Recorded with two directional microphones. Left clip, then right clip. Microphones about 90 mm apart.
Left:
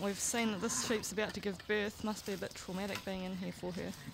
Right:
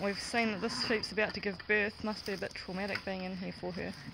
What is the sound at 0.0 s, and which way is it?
Speech, 30° left (ahead or behind).